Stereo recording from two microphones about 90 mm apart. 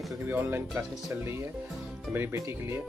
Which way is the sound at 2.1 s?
25° right (ahead or behind).